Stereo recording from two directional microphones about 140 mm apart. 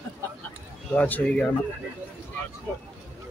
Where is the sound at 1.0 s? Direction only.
10° left (ahead or behind).